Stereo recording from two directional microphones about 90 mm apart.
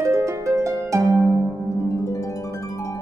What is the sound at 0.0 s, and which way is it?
Harp, 35° right (ahead or behind).